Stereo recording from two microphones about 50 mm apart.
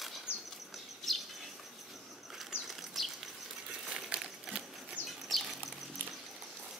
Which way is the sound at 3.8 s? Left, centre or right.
Centre.